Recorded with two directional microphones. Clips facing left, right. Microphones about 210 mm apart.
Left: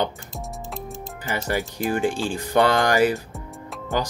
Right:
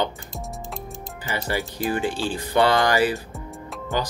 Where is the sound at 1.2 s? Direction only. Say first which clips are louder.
Left 1 dB; 50° left (ahead or behind).